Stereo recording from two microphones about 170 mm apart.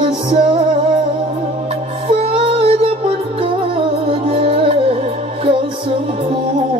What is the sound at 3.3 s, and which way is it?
Music, 30° right (ahead or behind).